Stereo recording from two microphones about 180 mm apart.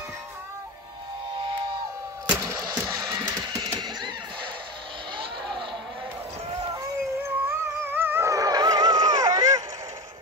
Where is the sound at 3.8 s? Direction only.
25° right (ahead or behind).